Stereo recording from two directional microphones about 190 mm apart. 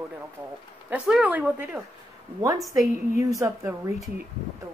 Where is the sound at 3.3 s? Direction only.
15° right (ahead or behind).